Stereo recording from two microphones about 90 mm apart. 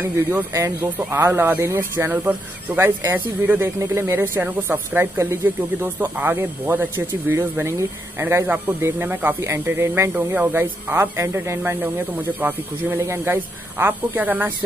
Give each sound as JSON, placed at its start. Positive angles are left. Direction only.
{"t": 0.0, "sound": "speech", "side_deg": -25}